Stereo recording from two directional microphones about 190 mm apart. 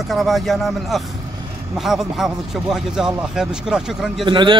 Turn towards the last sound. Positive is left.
turn(degrees=-25)  # may be behind; listen again after turning